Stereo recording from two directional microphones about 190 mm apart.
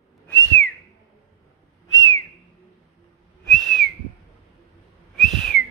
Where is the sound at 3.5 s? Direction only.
Centre (ahead or behind).